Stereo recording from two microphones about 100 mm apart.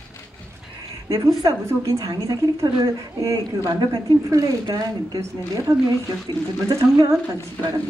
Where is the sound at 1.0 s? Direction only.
35° right (ahead or behind).